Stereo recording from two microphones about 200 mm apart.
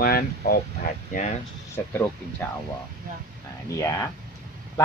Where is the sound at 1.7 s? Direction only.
10° left (ahead or behind).